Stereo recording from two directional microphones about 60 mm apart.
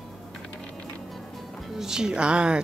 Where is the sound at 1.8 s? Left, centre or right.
Centre.